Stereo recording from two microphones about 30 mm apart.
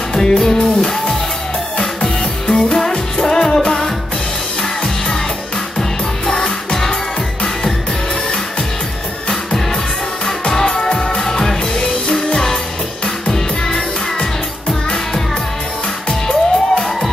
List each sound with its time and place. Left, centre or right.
0.1 s music: centre
2.4 s music: left
5.8 s music: centre
10.5 s music: left
11.8 s music: left
13.3 s music: left
16.1 s music: left